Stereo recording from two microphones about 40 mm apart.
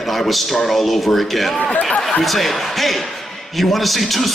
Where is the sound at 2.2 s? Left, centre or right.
Centre.